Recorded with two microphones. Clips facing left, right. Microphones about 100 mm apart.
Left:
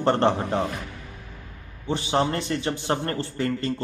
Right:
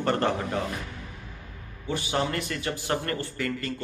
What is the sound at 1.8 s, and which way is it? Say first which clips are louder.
A man's voice: left 4 dB; 30° left (ahead or behind).